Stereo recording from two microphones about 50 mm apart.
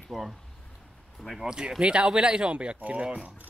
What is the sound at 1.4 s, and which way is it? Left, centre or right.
Speech, centre.